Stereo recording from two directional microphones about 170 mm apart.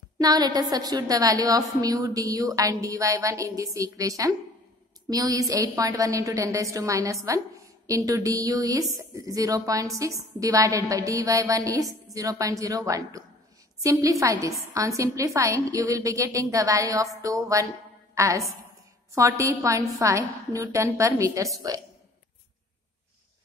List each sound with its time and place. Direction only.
0.2 s a woman's voice: 20° right (ahead or behind)